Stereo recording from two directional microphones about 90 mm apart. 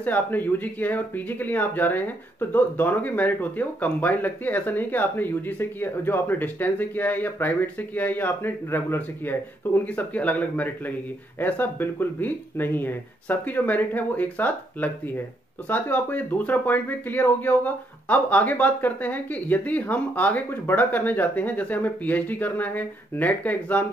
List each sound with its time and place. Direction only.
0.0 s speech: 20° left (ahead or behind)